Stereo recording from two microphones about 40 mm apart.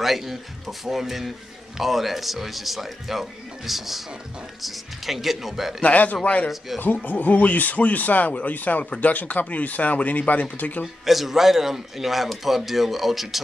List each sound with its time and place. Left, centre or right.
0.0 s a man's voice: centre
5.8 s speech: left
7.1 s speech: left
11.1 s a man's voice: centre